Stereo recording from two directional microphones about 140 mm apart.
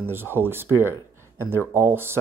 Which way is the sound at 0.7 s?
25° left (ahead or behind).